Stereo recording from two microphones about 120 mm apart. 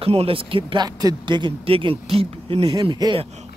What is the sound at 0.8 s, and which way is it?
Speech, 35° right (ahead or behind).